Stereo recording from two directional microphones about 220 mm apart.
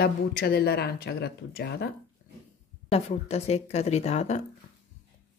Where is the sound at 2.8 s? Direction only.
30° left (ahead or behind).